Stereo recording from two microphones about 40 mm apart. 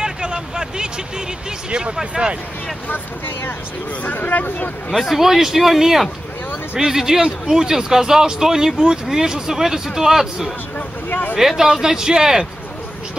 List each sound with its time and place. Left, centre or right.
0.0 s a sound: centre
1.7 s speech: right
4.0 s speech: left
4.9 s speech: centre
7.2 s speech: right
7.5 s speech: centre
11.1 s speech: left
11.3 s speech: centre